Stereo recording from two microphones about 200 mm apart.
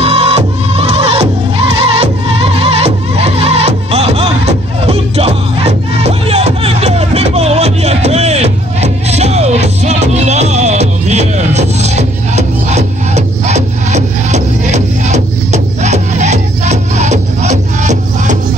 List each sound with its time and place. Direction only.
0.0 s music: 30° right (ahead or behind)